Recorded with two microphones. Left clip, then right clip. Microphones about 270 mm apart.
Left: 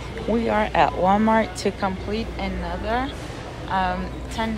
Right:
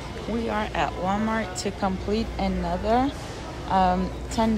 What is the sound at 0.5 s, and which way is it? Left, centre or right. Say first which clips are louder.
Speech: left 7 dB; centre.